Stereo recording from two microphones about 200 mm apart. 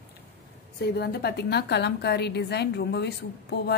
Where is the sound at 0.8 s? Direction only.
55° left (ahead or behind).